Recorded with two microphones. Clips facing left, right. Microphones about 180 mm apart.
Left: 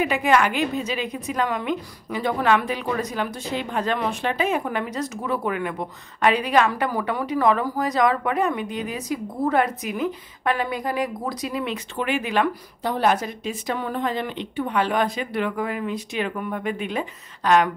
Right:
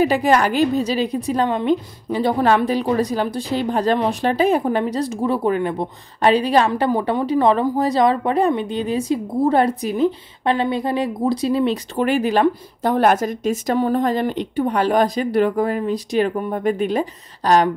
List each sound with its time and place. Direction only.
0.0 s a woman's voice: 35° right (ahead or behind)
12.9 s a woman's voice: 50° right (ahead or behind)